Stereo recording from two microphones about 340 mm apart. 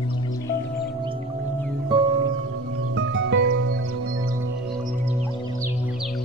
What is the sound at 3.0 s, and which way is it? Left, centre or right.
Music, right.